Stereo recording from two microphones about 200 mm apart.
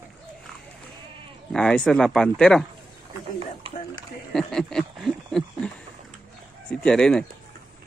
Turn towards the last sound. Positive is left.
turn(degrees=5)  # may be behind; listen again after turning